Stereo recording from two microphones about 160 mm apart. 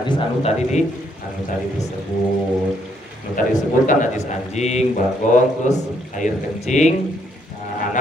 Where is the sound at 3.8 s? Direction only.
45° left (ahead or behind).